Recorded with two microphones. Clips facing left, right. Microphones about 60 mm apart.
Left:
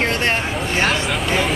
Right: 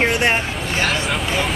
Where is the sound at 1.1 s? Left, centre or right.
Centre.